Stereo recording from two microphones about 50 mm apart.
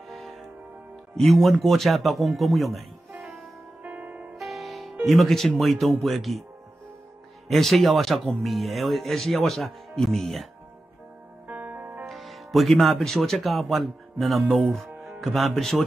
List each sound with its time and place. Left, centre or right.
0.1 s music: centre
1.1 s speech: centre
3.2 s music: centre
3.8 s music: right
4.4 s music: centre
5.0 s speech: centre
7.4 s speech: centre
11.4 s music: right
12.1 s speech: centre